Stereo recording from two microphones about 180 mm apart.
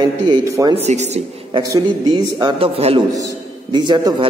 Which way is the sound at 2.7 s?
35° right (ahead or behind).